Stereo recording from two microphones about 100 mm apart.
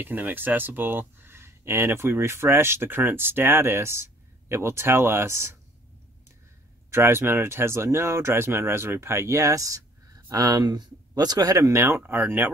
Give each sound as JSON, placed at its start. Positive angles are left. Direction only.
{"t": 0.0, "sound": "speech", "side_deg": -20}
{"t": 6.9, "sound": "speech", "side_deg": -25}